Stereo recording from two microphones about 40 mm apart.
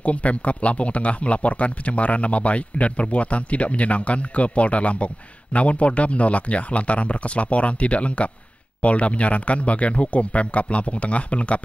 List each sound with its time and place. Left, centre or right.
0.0 s speech: left